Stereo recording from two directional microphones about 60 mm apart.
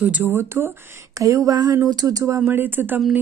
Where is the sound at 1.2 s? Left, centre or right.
Right.